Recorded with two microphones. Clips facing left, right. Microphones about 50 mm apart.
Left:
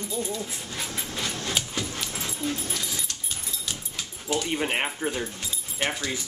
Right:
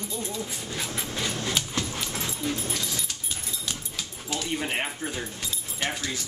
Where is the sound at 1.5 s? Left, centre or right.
Centre.